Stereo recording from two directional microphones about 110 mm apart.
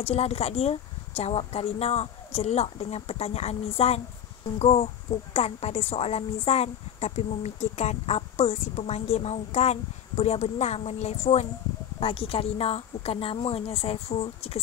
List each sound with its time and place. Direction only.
0.0 s speech: 70° left (ahead or behind)
12.0 s a woman's voice: 65° left (ahead or behind)